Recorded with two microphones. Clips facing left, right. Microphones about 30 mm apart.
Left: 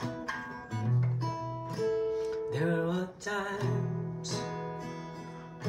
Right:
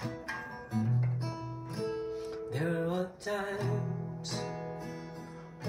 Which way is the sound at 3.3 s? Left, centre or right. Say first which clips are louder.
Left 2 dB; centre.